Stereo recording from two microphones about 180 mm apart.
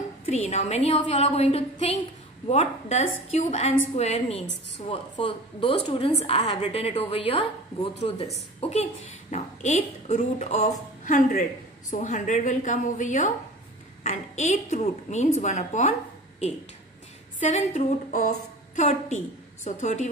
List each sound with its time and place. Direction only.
0.3 s a woman's voice: 40° left (ahead or behind)
8.5 s a woman's voice: 35° left (ahead or behind)
17.4 s a woman's voice: 40° left (ahead or behind)